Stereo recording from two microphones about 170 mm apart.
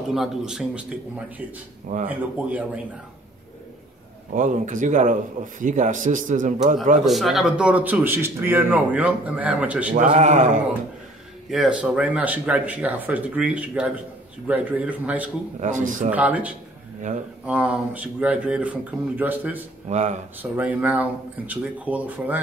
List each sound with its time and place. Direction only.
0.1 s a man's voice: centre (ahead or behind)
4.3 s speech: 45° right (ahead or behind)
7.1 s speech: centre (ahead or behind)
9.9 s speech: 45° right (ahead or behind)
11.5 s speech: 5° right (ahead or behind)
15.6 s speech: 50° right (ahead or behind)
16.1 s speech: 10° right (ahead or behind)
19.9 s speech: 45° right (ahead or behind)
20.5 s speech: 10° right (ahead or behind)